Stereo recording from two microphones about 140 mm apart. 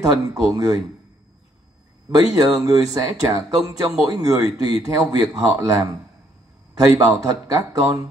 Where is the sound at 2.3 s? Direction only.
25° right (ahead or behind).